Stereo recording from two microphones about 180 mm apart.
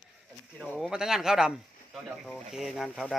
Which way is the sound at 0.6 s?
5° left (ahead or behind).